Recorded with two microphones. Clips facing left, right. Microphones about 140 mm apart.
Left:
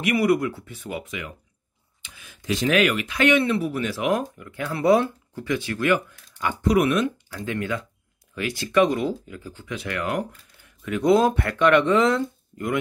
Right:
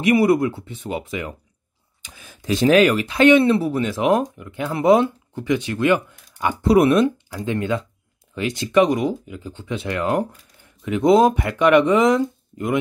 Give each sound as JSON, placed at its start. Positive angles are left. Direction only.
{"t": 0.0, "sound": "speech", "side_deg": -25}